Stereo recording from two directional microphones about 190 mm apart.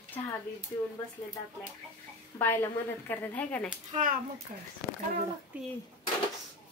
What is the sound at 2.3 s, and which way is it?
Speech, 10° left (ahead or behind).